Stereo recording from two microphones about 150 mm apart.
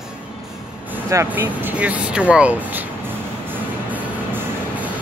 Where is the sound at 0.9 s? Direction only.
15° right (ahead or behind).